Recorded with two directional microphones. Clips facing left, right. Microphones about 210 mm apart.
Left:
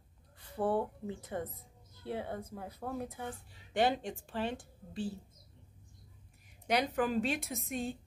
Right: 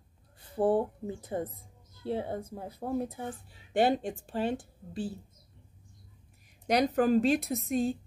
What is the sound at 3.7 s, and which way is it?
Speech, 40° right (ahead or behind).